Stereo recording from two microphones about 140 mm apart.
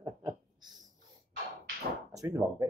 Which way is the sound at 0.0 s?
20° right (ahead or behind).